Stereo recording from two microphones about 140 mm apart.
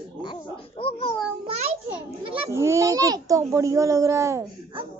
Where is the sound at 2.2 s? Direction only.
40° right (ahead or behind).